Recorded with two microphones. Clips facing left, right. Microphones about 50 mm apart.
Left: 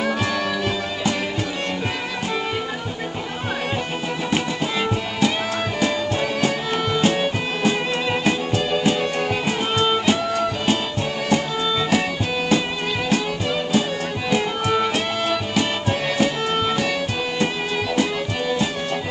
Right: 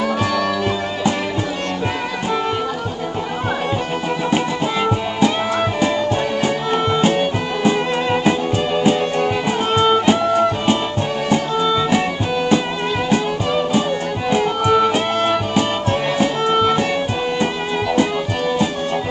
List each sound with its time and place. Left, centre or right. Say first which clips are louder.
4.8 s music: right 5 dB; centre
7.0 s music: right 3 dB; right
13.1 s music: right 4 dB; centre
15.1 s music: right 4 dB; right